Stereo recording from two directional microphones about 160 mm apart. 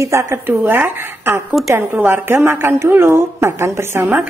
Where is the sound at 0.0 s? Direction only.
20° right (ahead or behind).